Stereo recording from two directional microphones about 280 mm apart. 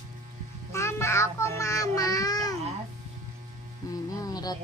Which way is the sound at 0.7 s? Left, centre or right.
Centre.